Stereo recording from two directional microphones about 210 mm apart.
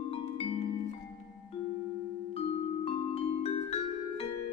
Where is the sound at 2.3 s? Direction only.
30° left (ahead or behind).